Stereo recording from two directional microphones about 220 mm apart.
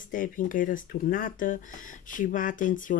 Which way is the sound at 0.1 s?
40° left (ahead or behind).